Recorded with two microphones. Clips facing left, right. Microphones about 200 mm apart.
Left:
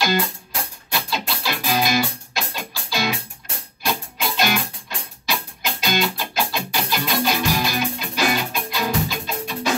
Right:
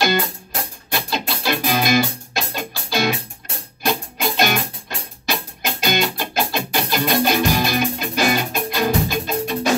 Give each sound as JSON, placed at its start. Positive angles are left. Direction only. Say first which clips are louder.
{"t": 0.9, "sound": "music", "louder": "right 2 dB", "side_deg": -50}